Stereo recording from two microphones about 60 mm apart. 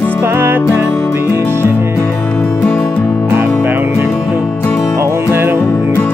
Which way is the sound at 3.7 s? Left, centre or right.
Right.